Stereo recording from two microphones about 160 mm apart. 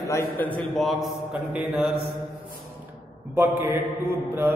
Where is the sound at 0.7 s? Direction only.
Centre (ahead or behind).